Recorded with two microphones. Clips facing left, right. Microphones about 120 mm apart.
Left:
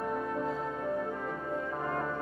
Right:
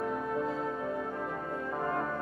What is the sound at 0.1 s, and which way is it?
Music, centre (ahead or behind).